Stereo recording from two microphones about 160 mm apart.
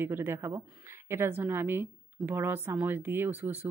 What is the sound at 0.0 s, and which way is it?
A woman's voice, 15° right (ahead or behind).